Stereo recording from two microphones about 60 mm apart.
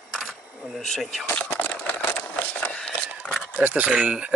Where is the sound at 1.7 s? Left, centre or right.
Left.